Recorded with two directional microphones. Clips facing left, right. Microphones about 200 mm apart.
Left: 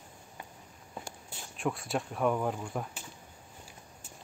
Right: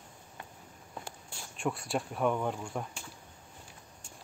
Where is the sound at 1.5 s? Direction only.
Centre (ahead or behind).